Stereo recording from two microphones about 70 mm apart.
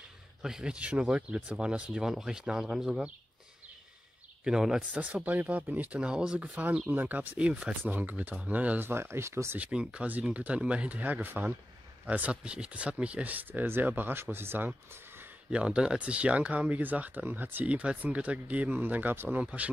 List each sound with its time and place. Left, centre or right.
0.4 s speech: centre
4.5 s speech: centre
5.0 s speech: right
9.6 s speech: centre; by 14.7 s right
15.5 s speech: centre